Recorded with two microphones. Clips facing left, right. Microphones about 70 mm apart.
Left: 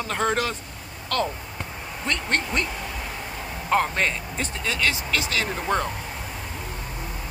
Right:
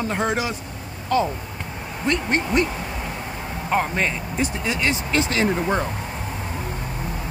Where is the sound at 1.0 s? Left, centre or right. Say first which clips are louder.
Right 5 dB; centre.